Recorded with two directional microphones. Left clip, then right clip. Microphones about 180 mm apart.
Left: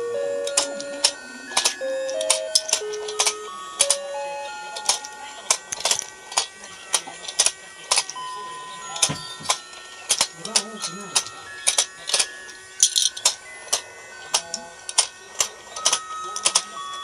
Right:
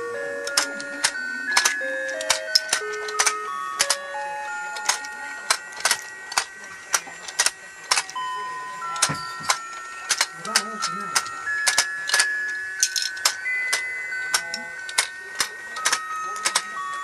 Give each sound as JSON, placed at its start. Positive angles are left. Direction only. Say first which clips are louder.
{"t": 0.1, "sound": "music", "louder": "left 1 dB", "side_deg": -25}
{"t": 5.5, "sound": "clock", "louder": "even", "side_deg": -20}
{"t": 6.9, "sound": "a sound", "louder": "right 1 dB", "side_deg": -20}
{"t": 8.8, "sound": "music", "louder": "right 1 dB", "side_deg": -25}
{"t": 13.2, "sound": "clock", "louder": "right 3 dB", "side_deg": -15}
{"t": 15.0, "sound": "printer", "louder": "left 1 dB", "side_deg": -20}